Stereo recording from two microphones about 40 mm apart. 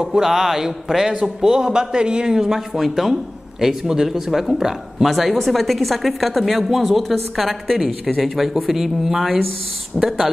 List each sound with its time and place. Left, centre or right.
0.0 s a man's voice: centre
2.7 s speech: centre